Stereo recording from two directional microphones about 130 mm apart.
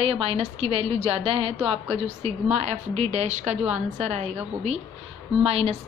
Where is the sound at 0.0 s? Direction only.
45° right (ahead or behind).